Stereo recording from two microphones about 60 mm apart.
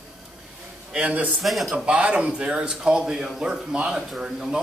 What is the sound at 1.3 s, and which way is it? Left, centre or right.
Speech, centre.